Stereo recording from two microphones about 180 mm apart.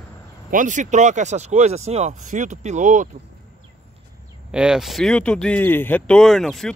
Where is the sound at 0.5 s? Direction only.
45° right (ahead or behind).